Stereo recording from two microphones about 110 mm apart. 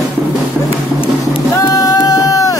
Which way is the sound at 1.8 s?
30° left (ahead or behind).